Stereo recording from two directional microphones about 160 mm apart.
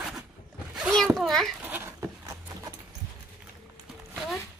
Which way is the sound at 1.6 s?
15° right (ahead or behind).